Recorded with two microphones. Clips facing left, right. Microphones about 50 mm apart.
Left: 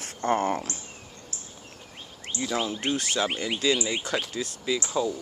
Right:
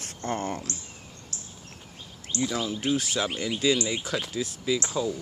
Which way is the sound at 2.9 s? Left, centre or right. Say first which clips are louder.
Left 1 dB; centre.